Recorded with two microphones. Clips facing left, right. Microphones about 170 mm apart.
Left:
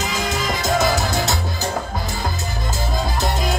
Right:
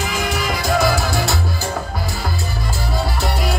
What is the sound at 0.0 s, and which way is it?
Music, 20° left (ahead or behind).